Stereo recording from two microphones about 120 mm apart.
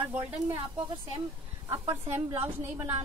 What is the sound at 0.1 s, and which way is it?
Speech, 10° right (ahead or behind).